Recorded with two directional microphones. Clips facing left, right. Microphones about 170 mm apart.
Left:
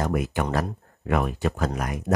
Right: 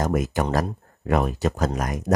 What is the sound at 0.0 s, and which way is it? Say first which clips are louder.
Speech: right 2 dB; 40° right (ahead or behind).